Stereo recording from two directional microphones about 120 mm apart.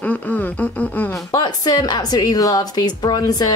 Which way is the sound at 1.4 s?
35° left (ahead or behind).